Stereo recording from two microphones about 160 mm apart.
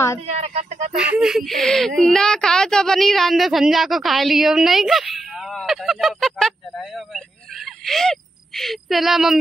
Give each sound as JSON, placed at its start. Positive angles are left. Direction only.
{"t": 0.3, "sound": "speech", "side_deg": -40}
{"t": 0.9, "sound": "speech", "side_deg": -5}
{"t": 7.8, "sound": "speech", "side_deg": 0}